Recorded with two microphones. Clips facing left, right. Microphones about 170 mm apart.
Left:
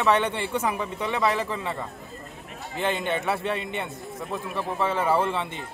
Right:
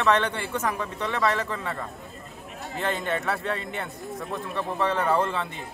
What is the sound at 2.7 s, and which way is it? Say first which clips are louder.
Speech: left 1 dB; centre (ahead or behind).